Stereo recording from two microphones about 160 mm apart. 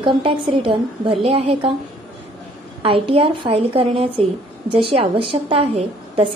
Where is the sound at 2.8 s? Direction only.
35° right (ahead or behind).